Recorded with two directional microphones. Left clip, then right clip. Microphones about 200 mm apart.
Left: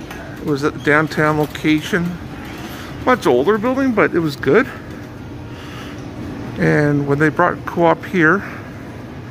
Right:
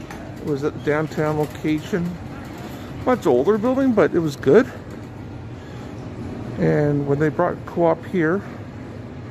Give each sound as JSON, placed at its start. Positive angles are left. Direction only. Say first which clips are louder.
{"t": 0.5, "sound": "speech", "louder": "left 6 dB", "side_deg": -5}
{"t": 3.1, "sound": "speech", "louder": "left 4 dB", "side_deg": -10}
{"t": 6.6, "sound": "speech", "louder": "left 4 dB", "side_deg": -10}